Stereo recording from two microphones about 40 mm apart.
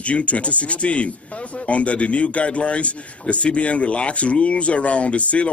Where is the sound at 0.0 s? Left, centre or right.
Left.